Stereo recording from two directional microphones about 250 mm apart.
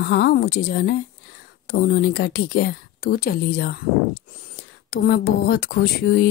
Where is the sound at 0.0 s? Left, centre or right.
Left.